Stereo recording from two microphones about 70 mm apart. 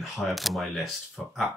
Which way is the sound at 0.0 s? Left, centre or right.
Centre.